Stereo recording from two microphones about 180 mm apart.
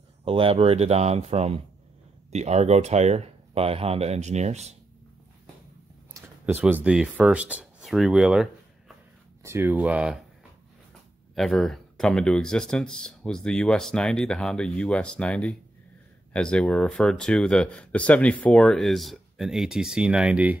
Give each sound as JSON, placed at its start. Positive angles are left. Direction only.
{"t": 0.2, "sound": "speech", "side_deg": -30}
{"t": 6.1, "sound": "speech", "side_deg": -10}
{"t": 9.4, "sound": "speech", "side_deg": -15}
{"t": 11.3, "sound": "speech", "side_deg": 0}